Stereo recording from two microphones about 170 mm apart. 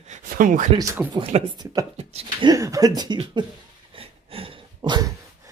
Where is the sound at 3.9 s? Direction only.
35° right (ahead or behind).